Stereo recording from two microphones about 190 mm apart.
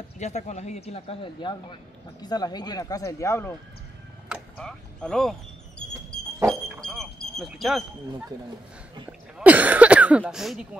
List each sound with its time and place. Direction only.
0.2 s speech: 35° left (ahead or behind); by 3.5 s 15° left (ahead or behind)
4.6 s a sound: 5° left (ahead or behind)
9.4 s throat clearing: 10° right (ahead or behind)